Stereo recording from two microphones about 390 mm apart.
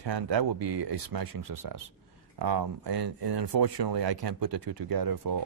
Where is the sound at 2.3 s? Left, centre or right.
Right.